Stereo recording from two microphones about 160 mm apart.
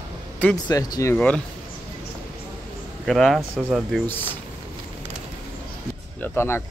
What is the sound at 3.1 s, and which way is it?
Speech, centre (ahead or behind).